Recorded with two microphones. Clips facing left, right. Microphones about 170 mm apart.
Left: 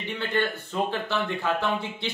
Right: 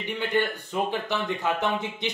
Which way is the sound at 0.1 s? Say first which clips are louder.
Right 1 dB; 15° right (ahead or behind).